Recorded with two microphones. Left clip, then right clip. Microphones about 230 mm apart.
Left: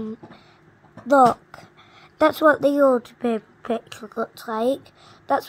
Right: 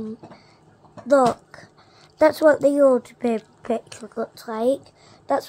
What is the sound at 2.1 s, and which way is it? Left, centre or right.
A woman's voice, left.